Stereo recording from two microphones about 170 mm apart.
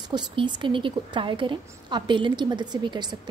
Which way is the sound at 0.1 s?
25° right (ahead or behind).